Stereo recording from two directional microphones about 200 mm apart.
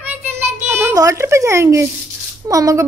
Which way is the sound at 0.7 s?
15° right (ahead or behind).